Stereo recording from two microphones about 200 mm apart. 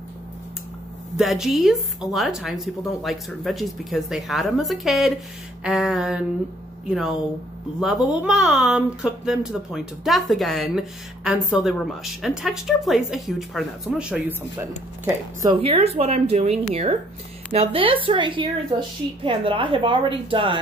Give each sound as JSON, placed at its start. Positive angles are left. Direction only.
{"t": 1.1, "sound": "speech", "side_deg": 0}
{"t": 8.2, "sound": "speech", "side_deg": 0}
{"t": 15.4, "sound": "a woman's voice", "side_deg": -25}